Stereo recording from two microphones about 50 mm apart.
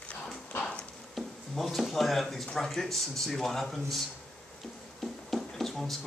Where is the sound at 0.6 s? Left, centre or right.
Left.